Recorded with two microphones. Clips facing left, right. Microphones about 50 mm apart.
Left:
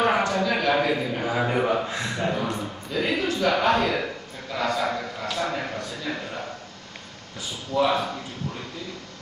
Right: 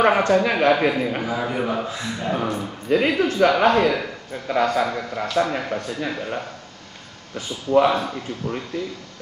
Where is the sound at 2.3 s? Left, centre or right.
Right.